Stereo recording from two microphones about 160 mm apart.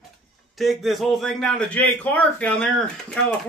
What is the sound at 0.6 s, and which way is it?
A man's voice, centre (ahead or behind).